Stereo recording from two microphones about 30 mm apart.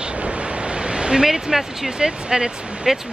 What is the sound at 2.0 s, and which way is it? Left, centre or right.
Speech, right.